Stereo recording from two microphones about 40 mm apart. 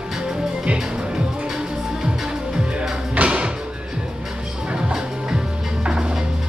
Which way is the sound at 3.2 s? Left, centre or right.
Right.